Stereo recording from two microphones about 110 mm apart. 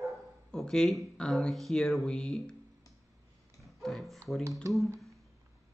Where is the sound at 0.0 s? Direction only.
5° left (ahead or behind).